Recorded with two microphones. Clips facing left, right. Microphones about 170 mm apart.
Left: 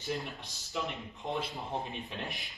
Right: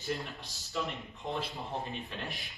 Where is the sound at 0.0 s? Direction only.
Centre (ahead or behind).